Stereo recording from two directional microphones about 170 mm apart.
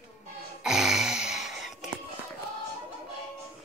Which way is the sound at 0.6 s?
5° right (ahead or behind).